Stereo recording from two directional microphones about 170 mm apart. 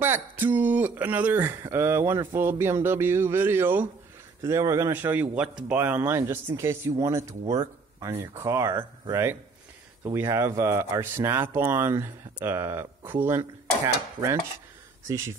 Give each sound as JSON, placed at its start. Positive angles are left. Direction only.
{"t": 0.0, "sound": "speech", "side_deg": -10}
{"t": 14.2, "sound": "stir", "side_deg": -20}
{"t": 15.0, "sound": "speech", "side_deg": -15}